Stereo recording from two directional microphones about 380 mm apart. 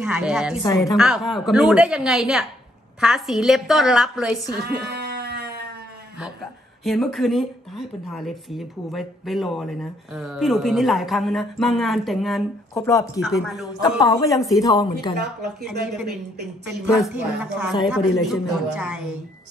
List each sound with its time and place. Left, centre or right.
0.0 s speech: centre
0.6 s speech: centre
4.8 s sheep: right
6.8 s speech: centre
13.8 s a woman's voice: centre
15.1 s speech: centre